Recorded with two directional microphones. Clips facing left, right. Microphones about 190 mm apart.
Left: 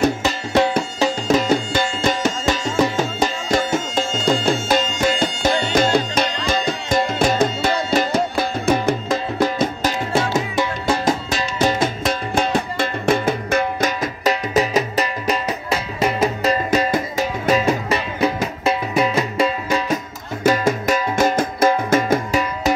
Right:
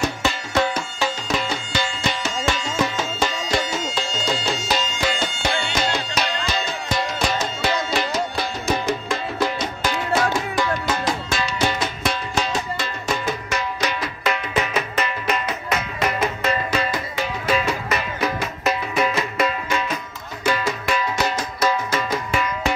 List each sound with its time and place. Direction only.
1.2 s music: 50° left (ahead or behind)
2.4 s music: 40° left (ahead or behind)
6.1 s music: 50° left (ahead or behind)
9.8 s music: 25° left (ahead or behind)
11.1 s music: 40° left (ahead or behind)
16.2 s music: 40° left (ahead or behind)